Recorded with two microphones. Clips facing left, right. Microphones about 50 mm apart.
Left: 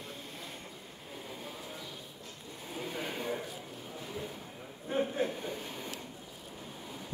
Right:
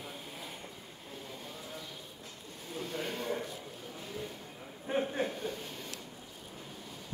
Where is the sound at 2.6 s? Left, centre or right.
Centre.